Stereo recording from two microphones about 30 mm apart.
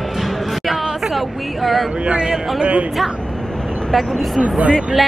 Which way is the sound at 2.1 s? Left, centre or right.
Right.